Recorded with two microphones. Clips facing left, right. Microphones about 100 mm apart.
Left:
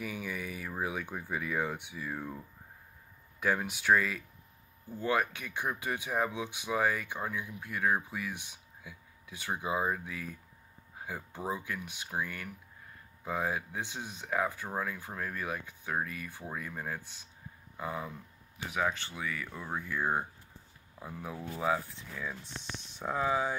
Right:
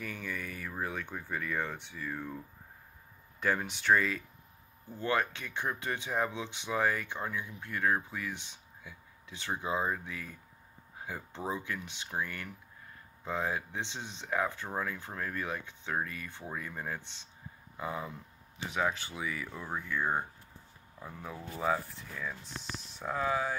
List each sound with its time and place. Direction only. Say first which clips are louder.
0.0 s speech: left 2 dB; 10° left (ahead or behind)
22.9 s speech: left 1 dB; 15° left (ahead or behind)